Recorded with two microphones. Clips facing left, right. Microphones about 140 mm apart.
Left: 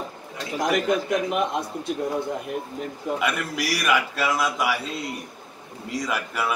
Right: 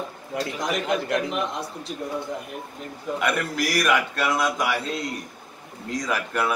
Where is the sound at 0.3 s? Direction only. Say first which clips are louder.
Right 8 dB; 60° right (ahead or behind).